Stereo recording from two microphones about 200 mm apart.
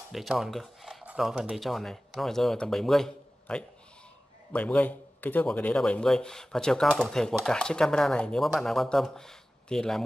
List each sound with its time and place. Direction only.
0.1 s a man's voice: centre (ahead or behind)